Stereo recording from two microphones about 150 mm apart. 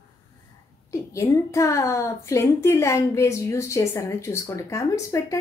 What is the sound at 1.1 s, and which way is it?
A woman's voice, 20° left (ahead or behind).